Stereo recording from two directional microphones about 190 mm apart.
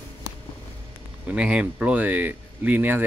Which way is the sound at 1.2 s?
5° right (ahead or behind).